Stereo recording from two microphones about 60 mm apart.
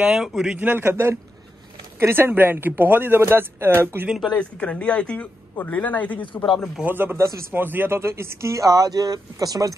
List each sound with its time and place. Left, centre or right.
0.1 s a man's voice: centre
0.6 s speech: right
3.2 s speech: right
4.3 s speech: centre
6.9 s speech: right